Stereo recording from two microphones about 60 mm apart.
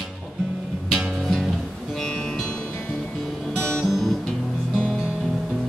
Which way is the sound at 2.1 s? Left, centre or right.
Centre.